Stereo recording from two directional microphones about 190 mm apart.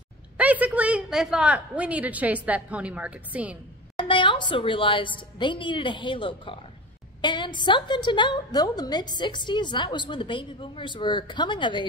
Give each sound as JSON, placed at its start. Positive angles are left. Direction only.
{"t": 0.4, "sound": "a woman's voice", "side_deg": -10}
{"t": 4.0, "sound": "a woman's voice", "side_deg": 25}